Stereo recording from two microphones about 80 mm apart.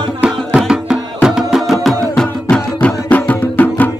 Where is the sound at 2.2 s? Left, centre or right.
Centre.